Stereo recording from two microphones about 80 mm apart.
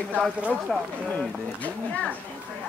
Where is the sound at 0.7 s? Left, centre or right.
Centre.